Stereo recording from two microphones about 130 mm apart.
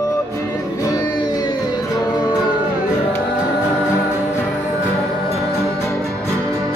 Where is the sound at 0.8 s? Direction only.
30° left (ahead or behind).